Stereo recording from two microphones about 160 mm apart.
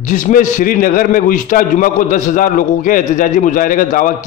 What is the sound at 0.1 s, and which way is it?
A man's voice, 55° left (ahead or behind).